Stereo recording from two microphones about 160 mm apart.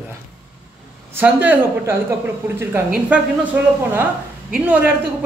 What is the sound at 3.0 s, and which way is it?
Speech, 10° right (ahead or behind).